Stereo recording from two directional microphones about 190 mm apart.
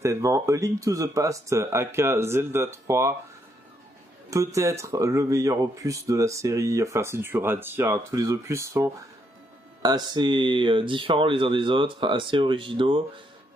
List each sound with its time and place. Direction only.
0.0 s speech: 15° right (ahead or behind)
4.3 s speech: 15° right (ahead or behind)